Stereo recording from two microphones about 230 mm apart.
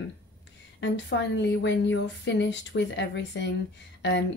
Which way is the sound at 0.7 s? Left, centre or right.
Left.